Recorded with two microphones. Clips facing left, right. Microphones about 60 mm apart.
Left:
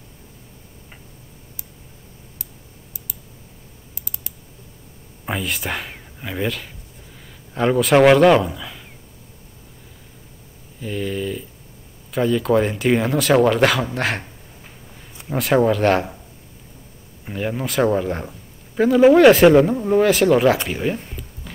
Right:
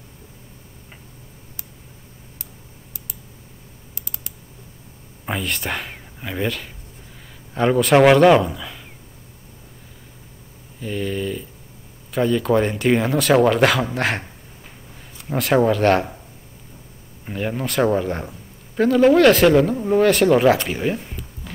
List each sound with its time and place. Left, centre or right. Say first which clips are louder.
3.9 s computer keyboard: right 1 dB; right
5.2 s a man's voice: even; centre
10.8 s a sound: even; centre
12.1 s speech: even; centre
15.2 s speech: even; centre
17.2 s speech: even; centre